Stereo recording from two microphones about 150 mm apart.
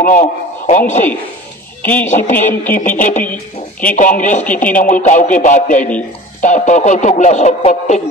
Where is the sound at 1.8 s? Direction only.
10° left (ahead or behind).